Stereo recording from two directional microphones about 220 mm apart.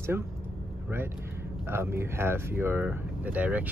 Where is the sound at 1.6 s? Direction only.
10° right (ahead or behind).